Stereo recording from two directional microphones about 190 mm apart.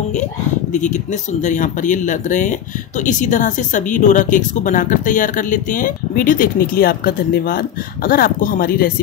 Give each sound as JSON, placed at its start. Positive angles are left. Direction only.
{"t": 0.7, "sound": "a woman's voice", "side_deg": 40}